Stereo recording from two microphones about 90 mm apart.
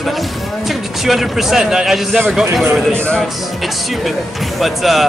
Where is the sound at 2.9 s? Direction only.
15° left (ahead or behind).